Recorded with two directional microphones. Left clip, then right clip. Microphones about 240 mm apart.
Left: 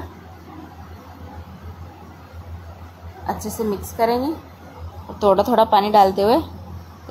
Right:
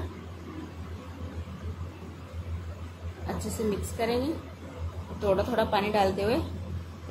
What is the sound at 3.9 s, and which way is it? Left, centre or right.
A woman's voice, centre.